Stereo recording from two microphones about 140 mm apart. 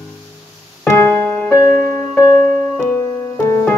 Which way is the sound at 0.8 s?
10° left (ahead or behind).